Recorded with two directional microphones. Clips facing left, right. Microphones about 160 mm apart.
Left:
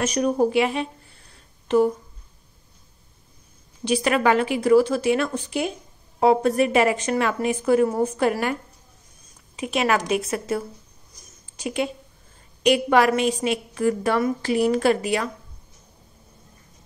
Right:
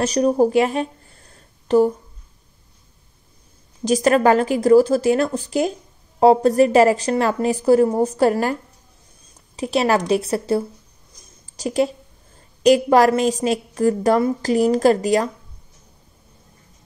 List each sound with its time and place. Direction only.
0.0 s a woman's voice: 35° right (ahead or behind)
3.8 s a woman's voice: 40° right (ahead or behind)
9.6 s a woman's voice: 35° right (ahead or behind)